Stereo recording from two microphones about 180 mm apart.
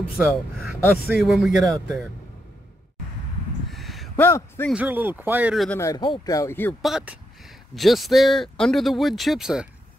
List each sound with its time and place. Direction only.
0.8 s speech: 5° right (ahead or behind)
3.7 s a sound: centre (ahead or behind)
4.2 s speech: 10° left (ahead or behind)
4.7 s speech: 10° right (ahead or behind)
5.7 s speech: 15° left (ahead or behind)
6.8 s speech: centre (ahead or behind)